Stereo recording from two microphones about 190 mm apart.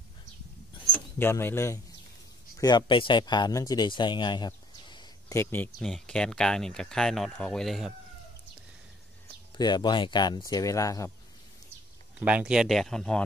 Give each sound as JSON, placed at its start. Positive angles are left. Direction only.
{"t": 1.1, "sound": "speech", "side_deg": 10}
{"t": 9.6, "sound": "speech", "side_deg": 20}
{"t": 12.3, "sound": "speech", "side_deg": -5}